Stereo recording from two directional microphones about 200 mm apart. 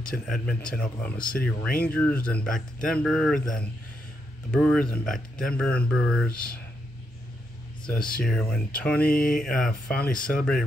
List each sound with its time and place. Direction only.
0.1 s speech: 5° left (ahead or behind)
6.3 s mantra: 45° left (ahead or behind)
8.2 s speech: 5° left (ahead or behind)
9.0 s mantra: 45° left (ahead or behind)
9.4 s speech: 5° left (ahead or behind)